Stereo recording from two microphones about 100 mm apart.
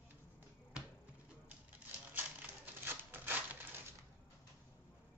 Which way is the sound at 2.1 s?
20° right (ahead or behind).